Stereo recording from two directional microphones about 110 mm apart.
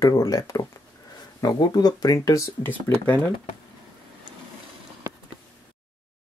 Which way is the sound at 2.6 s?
15° left (ahead or behind).